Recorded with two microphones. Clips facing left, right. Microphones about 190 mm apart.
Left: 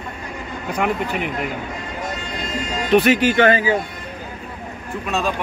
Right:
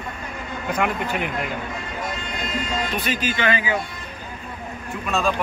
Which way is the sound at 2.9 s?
70° left (ahead or behind).